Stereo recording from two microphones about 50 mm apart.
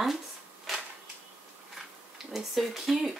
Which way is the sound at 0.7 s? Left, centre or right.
Centre.